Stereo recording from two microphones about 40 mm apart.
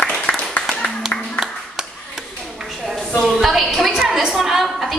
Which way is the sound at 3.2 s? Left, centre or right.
Centre.